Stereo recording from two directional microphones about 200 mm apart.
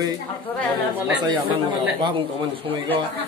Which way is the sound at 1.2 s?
25° right (ahead or behind).